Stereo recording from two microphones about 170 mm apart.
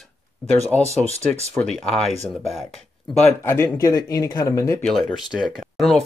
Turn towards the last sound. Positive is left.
turn(degrees=0)  # may be behind; listen again after turning